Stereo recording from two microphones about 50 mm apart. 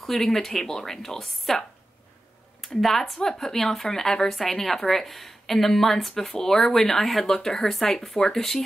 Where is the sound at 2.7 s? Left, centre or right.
Centre.